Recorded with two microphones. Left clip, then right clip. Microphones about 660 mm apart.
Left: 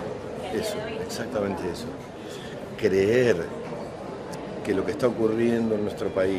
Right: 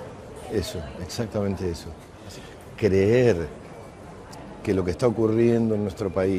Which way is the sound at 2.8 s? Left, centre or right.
Right.